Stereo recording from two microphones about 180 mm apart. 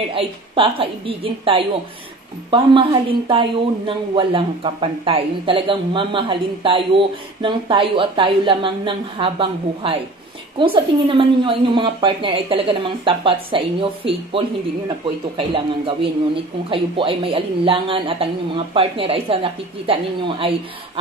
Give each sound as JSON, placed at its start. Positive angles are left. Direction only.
{"t": 0.1, "sound": "speech", "side_deg": -30}